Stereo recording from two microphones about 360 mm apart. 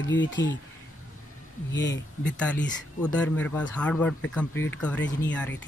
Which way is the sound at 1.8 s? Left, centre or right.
Left.